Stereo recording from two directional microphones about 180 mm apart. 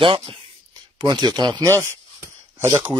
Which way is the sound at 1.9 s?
15° right (ahead or behind).